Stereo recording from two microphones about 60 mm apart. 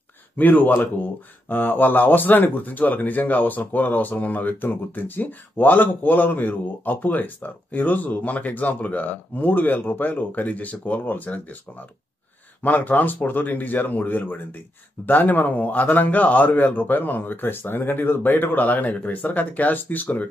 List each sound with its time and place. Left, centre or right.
0.4 s speech: left
12.6 s a man's voice: left